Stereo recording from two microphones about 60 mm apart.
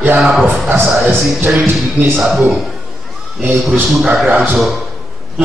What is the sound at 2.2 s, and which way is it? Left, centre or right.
Speech, centre.